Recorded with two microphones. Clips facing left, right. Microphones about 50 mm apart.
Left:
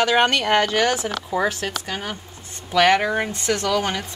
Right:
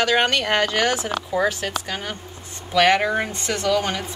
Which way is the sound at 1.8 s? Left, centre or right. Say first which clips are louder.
Even; centre.